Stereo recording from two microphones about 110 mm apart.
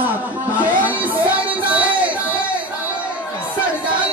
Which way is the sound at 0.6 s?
15° right (ahead or behind).